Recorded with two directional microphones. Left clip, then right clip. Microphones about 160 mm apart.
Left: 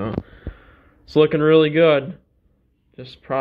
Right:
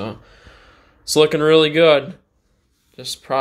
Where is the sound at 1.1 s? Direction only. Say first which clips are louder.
Right 1 dB; 25° right (ahead or behind).